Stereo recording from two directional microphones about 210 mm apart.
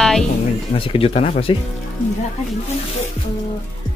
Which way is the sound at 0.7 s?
25° left (ahead or behind).